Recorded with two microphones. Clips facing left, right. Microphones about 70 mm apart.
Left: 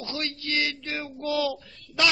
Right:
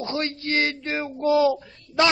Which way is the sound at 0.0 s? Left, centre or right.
Right.